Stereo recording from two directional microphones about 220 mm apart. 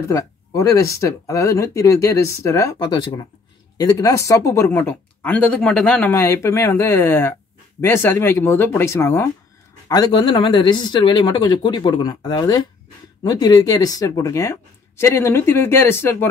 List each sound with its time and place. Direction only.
0.1 s speech: 15° left (ahead or behind)